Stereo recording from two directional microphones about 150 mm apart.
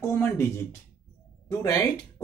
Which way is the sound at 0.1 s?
15° left (ahead or behind).